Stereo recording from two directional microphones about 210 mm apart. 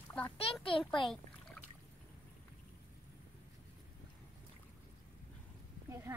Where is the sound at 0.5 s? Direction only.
25° left (ahead or behind).